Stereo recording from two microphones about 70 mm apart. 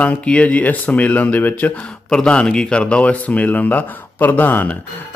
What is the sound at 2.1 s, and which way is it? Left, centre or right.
Speech, centre.